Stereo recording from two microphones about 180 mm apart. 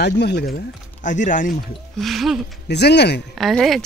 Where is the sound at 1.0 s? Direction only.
45° left (ahead or behind).